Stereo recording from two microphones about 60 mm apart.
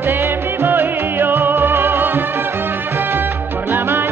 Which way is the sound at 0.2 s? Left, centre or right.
Right.